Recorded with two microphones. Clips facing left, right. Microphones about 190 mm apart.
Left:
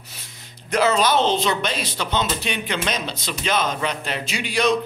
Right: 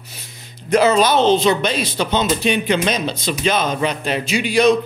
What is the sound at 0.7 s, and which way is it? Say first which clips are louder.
A man's voice: right 5 dB; 15° right (ahead or behind).